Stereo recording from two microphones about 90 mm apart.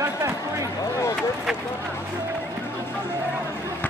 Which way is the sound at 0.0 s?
35° right (ahead or behind).